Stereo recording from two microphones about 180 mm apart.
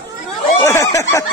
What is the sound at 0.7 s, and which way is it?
Speech, 15° left (ahead or behind).